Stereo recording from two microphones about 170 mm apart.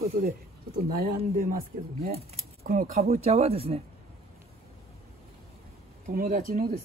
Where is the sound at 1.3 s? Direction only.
55° right (ahead or behind).